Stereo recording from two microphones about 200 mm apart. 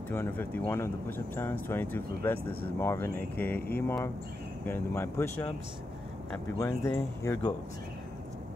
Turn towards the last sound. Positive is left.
turn(degrees=15)  # may be behind; listen again after turning